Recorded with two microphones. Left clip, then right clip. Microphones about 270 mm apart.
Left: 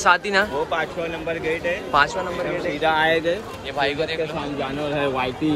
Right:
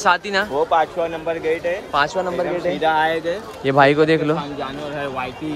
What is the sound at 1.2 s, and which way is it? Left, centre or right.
Speech, right.